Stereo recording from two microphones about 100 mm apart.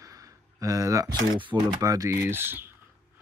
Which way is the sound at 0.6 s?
35° right (ahead or behind).